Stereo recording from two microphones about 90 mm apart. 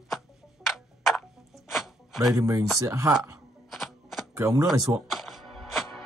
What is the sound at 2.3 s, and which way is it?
Speech, 35° right (ahead or behind).